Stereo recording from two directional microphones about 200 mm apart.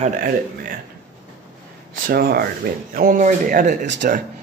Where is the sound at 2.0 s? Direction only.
50° right (ahead or behind).